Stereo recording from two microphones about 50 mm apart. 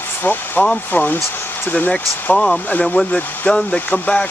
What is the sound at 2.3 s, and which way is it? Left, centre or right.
Speech, centre.